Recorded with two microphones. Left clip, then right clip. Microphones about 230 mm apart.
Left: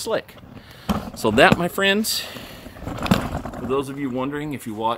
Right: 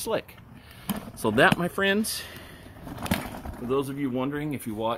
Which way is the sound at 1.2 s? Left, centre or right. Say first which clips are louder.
Left 6 dB; left.